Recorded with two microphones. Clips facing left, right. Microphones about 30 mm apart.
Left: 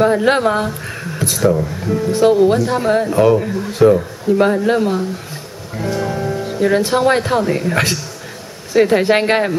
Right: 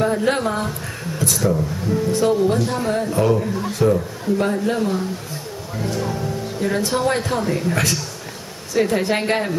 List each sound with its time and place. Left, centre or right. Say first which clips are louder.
0.0 s a man's voice: left 6 dB; left